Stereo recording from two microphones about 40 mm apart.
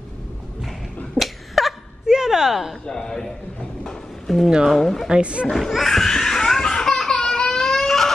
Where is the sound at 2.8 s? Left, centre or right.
Centre.